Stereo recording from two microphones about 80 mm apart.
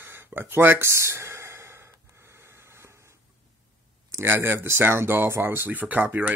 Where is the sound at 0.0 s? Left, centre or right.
Right.